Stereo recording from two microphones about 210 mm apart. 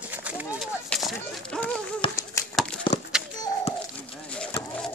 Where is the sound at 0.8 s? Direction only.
Centre (ahead or behind).